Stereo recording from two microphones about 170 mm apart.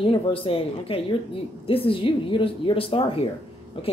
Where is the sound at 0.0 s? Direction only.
30° left (ahead or behind).